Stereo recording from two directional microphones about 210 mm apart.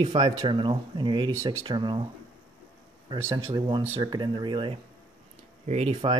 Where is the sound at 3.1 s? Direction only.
15° right (ahead or behind).